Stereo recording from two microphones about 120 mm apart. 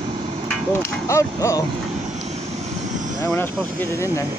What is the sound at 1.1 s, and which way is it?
Speech, 25° left (ahead or behind).